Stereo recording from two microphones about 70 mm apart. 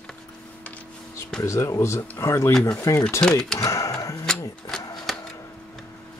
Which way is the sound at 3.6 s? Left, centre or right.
Left.